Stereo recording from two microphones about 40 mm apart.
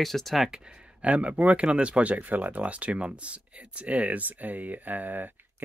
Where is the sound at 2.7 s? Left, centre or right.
Right.